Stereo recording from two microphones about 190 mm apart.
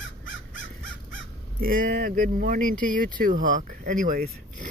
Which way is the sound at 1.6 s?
45° right (ahead or behind).